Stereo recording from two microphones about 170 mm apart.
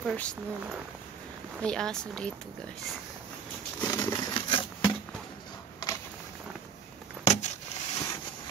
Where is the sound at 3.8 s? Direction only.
20° left (ahead or behind).